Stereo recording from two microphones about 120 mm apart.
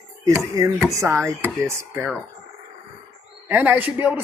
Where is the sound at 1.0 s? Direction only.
20° right (ahead or behind).